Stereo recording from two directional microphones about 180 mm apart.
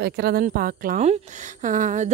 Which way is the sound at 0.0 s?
60° right (ahead or behind).